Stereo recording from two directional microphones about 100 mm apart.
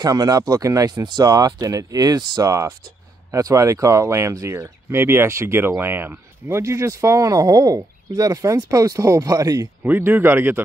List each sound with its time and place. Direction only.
0.0 s speech: 40° right (ahead or behind)
9.8 s speech: 20° right (ahead or behind)